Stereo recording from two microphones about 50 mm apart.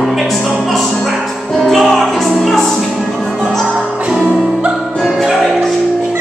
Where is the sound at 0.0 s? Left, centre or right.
Centre.